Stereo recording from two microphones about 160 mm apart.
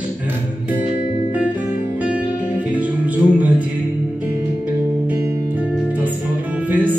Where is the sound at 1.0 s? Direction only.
35° left (ahead or behind).